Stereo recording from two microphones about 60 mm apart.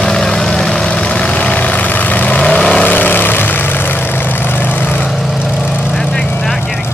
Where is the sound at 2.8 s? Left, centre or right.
Left.